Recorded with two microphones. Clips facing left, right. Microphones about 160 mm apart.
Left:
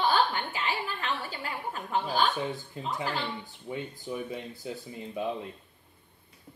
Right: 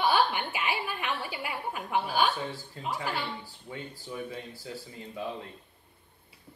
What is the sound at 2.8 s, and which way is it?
Speech, 10° right (ahead or behind).